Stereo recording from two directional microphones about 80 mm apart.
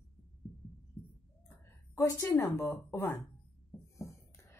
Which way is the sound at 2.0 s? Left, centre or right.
Left.